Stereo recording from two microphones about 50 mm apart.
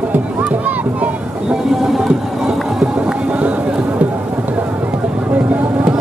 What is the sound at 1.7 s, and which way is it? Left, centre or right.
Boat, centre.